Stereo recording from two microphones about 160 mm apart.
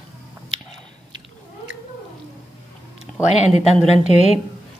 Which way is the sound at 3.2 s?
45° left (ahead or behind).